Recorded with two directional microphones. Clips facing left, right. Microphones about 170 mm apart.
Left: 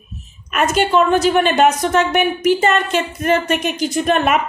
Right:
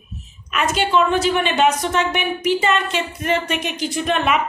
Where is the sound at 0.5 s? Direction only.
45° left (ahead or behind).